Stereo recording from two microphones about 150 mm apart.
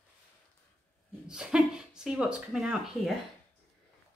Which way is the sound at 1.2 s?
5° right (ahead or behind).